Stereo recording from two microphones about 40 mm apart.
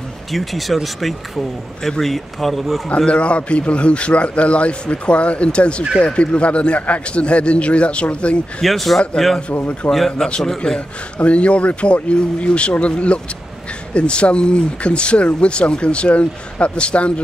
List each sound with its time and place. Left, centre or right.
0.3 s speech: centre
1.8 s speech: centre
3.1 s a man's voice: left
8.6 s a man's voice: centre
11.1 s a man's voice: left